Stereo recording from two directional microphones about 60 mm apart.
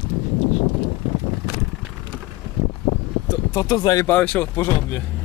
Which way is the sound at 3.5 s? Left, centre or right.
Left.